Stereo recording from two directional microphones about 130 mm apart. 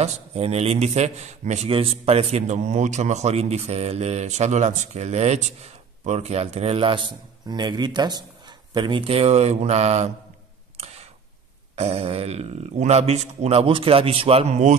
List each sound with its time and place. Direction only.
0.0 s speech: 55° right (ahead or behind)
1.7 s speech: 45° right (ahead or behind)
10.8 s camera: 55° right (ahead or behind)
11.7 s speech: 55° right (ahead or behind)